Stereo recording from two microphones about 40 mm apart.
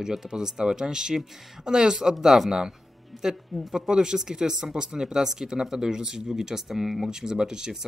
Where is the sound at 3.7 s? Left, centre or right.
Centre.